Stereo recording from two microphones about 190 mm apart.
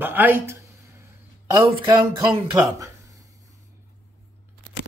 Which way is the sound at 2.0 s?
15° right (ahead or behind).